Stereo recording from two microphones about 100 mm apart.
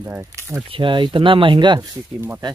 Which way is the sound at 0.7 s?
55° right (ahead or behind).